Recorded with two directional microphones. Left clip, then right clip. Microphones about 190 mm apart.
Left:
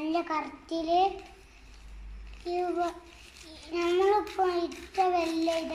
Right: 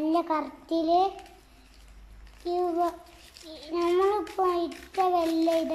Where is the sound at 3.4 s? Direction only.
20° right (ahead or behind).